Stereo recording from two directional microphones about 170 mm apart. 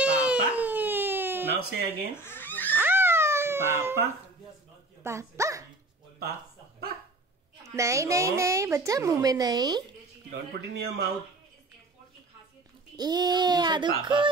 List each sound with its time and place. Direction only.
0.0 s baby cry: 5° right (ahead or behind)
1.5 s speech: 70° right (ahead or behind)
2.1 s a sound: 15° left (ahead or behind)
2.7 s crying: 10° right (ahead or behind)
5.0 s speech: 15° right (ahead or behind)
7.6 s speech: 20° right (ahead or behind)
10.3 s speech: 75° right (ahead or behind)
12.9 s speech: 25° right (ahead or behind)